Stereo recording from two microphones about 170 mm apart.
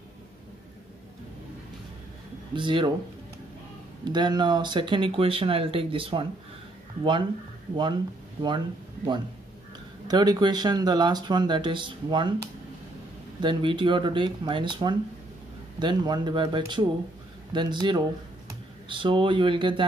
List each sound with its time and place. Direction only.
2.5 s speech: 30° right (ahead or behind)
4.1 s speech: 25° right (ahead or behind)
8.4 s speech: 25° right (ahead or behind)
13.4 s speech: 30° right (ahead or behind)